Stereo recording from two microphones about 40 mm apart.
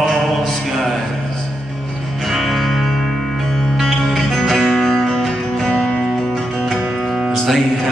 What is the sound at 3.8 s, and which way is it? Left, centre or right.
Music, centre.